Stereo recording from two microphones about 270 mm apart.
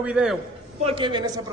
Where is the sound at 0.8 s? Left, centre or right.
Centre.